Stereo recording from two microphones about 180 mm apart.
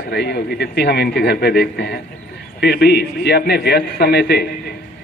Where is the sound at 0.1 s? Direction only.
65° left (ahead or behind).